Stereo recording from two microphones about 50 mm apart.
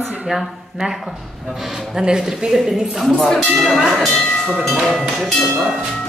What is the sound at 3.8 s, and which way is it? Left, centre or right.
Speech, centre.